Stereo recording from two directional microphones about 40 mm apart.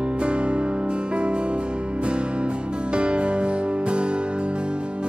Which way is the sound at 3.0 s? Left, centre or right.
Right.